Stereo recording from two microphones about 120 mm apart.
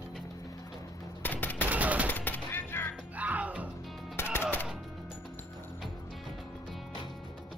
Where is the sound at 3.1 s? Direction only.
10° right (ahead or behind).